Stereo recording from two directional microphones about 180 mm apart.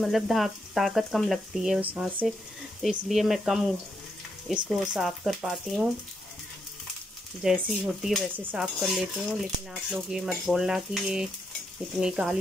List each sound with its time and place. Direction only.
0.0 s speech: centre (ahead or behind)
7.4 s speech: centre (ahead or behind)